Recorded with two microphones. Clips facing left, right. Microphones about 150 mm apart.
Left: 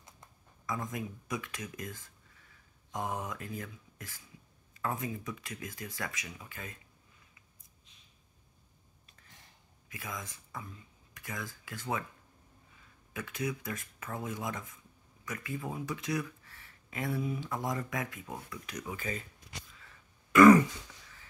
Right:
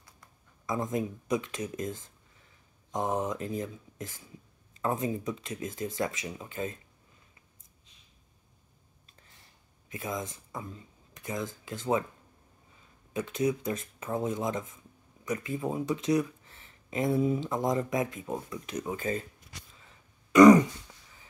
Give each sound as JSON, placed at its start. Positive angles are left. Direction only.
{"t": 0.7, "sound": "speech", "side_deg": -25}
{"t": 9.8, "sound": "speech", "side_deg": -25}
{"t": 13.1, "sound": "speech", "side_deg": -25}
{"t": 20.3, "sound": "throat clearing", "side_deg": -20}